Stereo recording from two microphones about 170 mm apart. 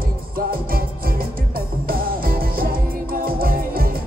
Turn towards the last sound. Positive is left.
turn(degrees=-60)  # may be behind; listen again after turning